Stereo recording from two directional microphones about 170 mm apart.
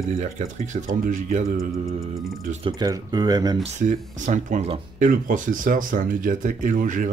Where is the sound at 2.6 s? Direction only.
25° right (ahead or behind).